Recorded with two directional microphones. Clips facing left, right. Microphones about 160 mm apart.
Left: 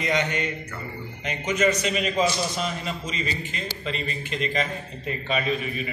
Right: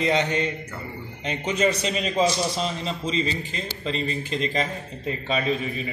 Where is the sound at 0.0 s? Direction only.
30° right (ahead or behind).